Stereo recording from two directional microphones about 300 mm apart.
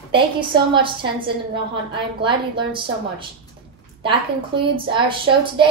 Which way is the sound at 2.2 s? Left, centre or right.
Centre.